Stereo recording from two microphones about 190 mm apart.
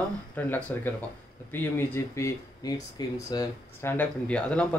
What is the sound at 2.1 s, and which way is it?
Speech, 15° left (ahead or behind).